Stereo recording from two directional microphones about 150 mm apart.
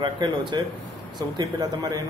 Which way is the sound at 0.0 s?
30° right (ahead or behind).